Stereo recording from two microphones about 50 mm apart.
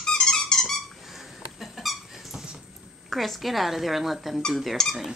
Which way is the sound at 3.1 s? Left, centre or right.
Centre.